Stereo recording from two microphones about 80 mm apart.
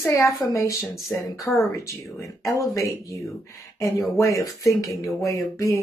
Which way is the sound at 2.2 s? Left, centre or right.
Left.